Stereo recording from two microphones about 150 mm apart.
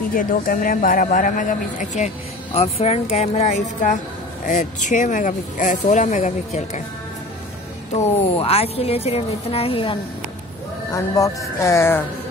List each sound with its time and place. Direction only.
0.1 s speech: 70° left (ahead or behind); by 6.8 s 50° left (ahead or behind)
7.9 s a woman's voice: 45° left (ahead or behind)
10.9 s speech: 20° left (ahead or behind)